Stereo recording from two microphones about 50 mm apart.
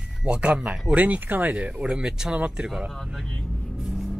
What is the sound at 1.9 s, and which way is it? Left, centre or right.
Speech, centre.